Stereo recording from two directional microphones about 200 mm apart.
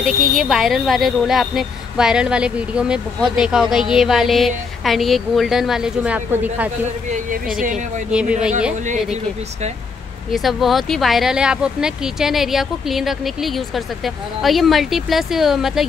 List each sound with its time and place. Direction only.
0.0 s speech: centre (ahead or behind)
7.1 s speech: 45° right (ahead or behind)
8.1 s speech: 5° right (ahead or behind)
8.8 s speech: 35° right (ahead or behind)
10.3 s speech: centre (ahead or behind)